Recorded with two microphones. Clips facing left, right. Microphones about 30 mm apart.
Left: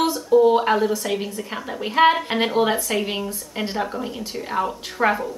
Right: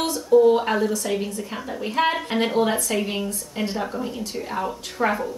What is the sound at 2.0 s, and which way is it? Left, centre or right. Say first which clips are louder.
A woman's voice: left 5 dB; centre.